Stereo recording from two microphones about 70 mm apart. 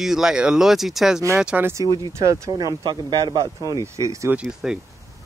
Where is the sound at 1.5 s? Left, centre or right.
Centre.